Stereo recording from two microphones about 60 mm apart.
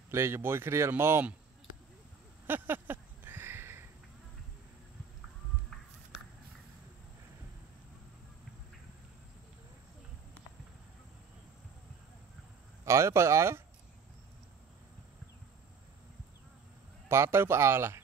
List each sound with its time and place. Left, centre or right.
0.1 s speech: right
2.4 s a sound: right
12.8 s speech: right
17.1 s speech: right